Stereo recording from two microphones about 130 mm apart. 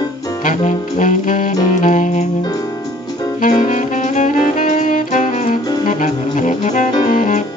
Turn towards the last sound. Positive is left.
turn(degrees=80)